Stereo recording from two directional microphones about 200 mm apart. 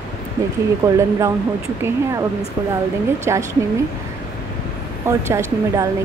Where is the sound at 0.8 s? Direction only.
15° right (ahead or behind).